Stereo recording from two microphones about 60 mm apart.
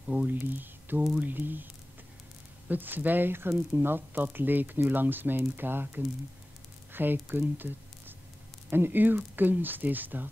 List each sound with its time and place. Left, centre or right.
0.3 s speech: right
2.7 s speech: right